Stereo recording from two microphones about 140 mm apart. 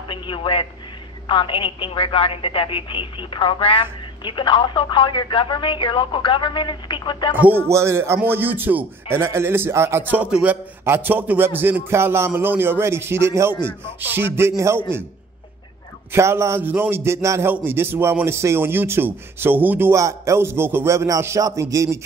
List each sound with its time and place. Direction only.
0.1 s a man's voice: 40° left (ahead or behind)
7.3 s a man's voice: 15° right (ahead or behind)
16.1 s a man's voice: 20° right (ahead or behind)